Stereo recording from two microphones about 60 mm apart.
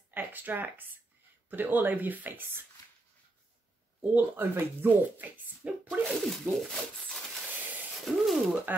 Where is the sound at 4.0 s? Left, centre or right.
Right.